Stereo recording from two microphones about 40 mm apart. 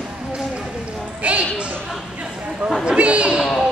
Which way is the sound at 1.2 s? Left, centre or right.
Right.